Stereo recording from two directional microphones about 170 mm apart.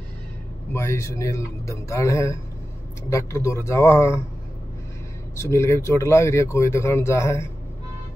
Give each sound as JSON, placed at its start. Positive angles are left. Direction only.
{"t": 0.7, "sound": "speech", "side_deg": 15}
{"t": 5.3, "sound": "speech", "side_deg": 15}